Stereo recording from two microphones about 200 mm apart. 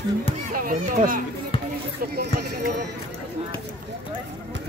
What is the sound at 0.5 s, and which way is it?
Speech, 45° right (ahead or behind).